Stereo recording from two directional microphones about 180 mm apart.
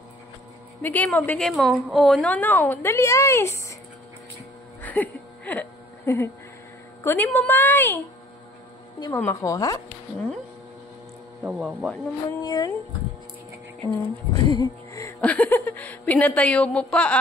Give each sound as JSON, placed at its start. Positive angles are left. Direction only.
{"t": 0.8, "sound": "speech", "side_deg": 10}
{"t": 4.8, "sound": "a sound", "side_deg": 10}
{"t": 7.0, "sound": "speech", "side_deg": 10}
{"t": 9.0, "sound": "speech", "side_deg": 15}
{"t": 11.4, "sound": "speech", "side_deg": 0}
{"t": 12.3, "sound": "speech", "side_deg": 20}
{"t": 14.3, "sound": "speech", "side_deg": 20}